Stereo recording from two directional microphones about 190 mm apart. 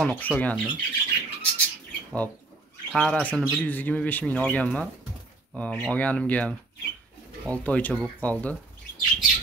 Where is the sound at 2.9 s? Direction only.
5° left (ahead or behind).